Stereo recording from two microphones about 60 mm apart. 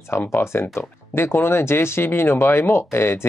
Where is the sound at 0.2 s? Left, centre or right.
Left.